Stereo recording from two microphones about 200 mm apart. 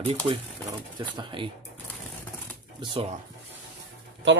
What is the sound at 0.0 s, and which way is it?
Speech, 30° right (ahead or behind).